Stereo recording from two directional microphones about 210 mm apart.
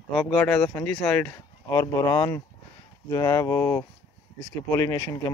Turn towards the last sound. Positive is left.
turn(degrees=15)  # may be behind; listen again after turning